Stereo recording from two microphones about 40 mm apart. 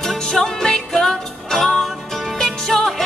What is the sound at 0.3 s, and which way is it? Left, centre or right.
Music, centre.